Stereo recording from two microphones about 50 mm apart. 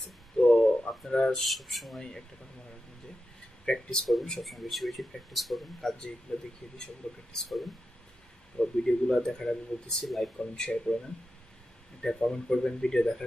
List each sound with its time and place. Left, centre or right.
0.4 s a sound: centre
1.1 s speech: centre
1.4 s speech: centre
2.0 s speech: centre
3.6 s speech: centre
4.0 s speech: centre
7.3 s speech: centre
8.5 s speech: centre
12.0 s speech: centre